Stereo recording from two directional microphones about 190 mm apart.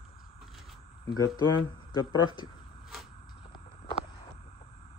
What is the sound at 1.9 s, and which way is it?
Speech, 20° left (ahead or behind).